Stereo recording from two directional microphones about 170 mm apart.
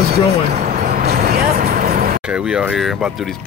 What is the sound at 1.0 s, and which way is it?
Vehicle, 65° right (ahead or behind).